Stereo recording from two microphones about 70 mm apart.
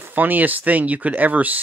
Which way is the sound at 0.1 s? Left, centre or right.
Right.